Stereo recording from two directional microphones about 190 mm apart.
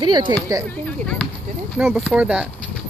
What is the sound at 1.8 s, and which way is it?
Speech, 5° right (ahead or behind).